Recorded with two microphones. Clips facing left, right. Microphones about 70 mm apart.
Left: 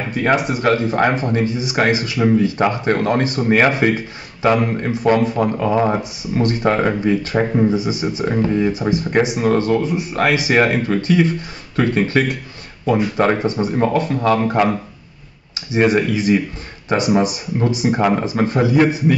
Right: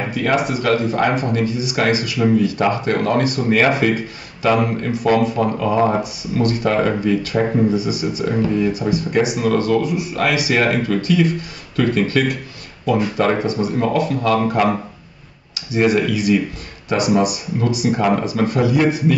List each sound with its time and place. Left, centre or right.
0.1 s speech: left
15.7 s speech: left